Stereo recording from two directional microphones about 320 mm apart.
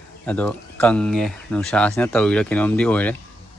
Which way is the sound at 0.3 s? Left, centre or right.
Centre.